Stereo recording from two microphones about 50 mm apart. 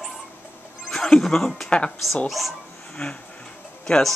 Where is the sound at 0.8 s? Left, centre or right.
Centre.